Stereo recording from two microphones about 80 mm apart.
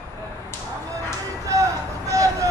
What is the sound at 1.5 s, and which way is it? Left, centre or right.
Vehicle, right.